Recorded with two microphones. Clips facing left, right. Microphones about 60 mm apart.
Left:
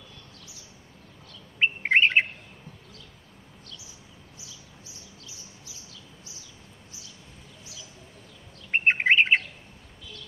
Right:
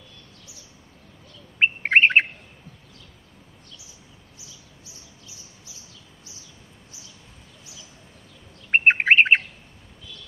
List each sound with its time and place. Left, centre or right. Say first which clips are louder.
1.6 s bird: right 4 dB; right
8.7 s bird: right 4 dB; right